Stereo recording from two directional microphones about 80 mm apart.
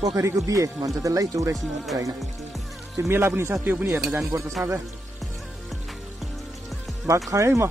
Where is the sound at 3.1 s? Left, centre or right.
Right.